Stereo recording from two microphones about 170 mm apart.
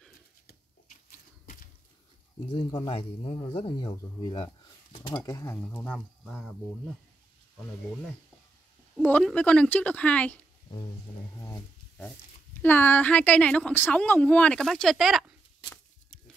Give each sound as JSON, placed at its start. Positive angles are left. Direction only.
{"t": 1.4, "sound": "a sound", "side_deg": 55}
{"t": 2.5, "sound": "a woman's voice", "side_deg": 25}
{"t": 5.6, "sound": "speech", "side_deg": 10}
{"t": 8.9, "sound": "a woman's voice", "side_deg": 5}
{"t": 11.3, "sound": "a woman's voice", "side_deg": 15}